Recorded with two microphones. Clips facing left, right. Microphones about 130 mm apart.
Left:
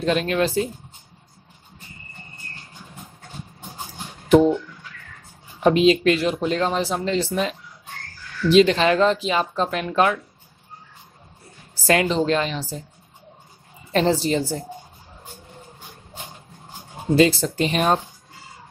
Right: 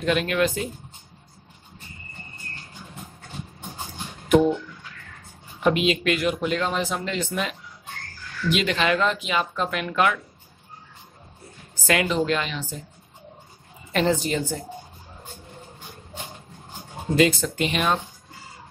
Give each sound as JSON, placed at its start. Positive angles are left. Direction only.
{"t": 0.0, "sound": "speech", "side_deg": 35}
{"t": 4.3, "sound": "a sound", "side_deg": 30}
{"t": 5.6, "sound": "speech", "side_deg": 35}
{"t": 11.7, "sound": "speech", "side_deg": 35}
{"t": 13.9, "sound": "speech", "side_deg": 35}
{"t": 17.1, "sound": "speech", "side_deg": 35}